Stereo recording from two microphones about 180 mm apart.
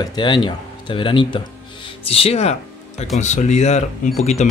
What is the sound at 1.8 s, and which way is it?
Music, 30° left (ahead or behind).